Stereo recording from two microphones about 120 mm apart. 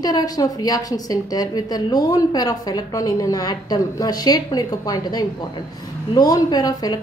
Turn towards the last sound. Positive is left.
turn(degrees=30)  # may be behind; listen again after turning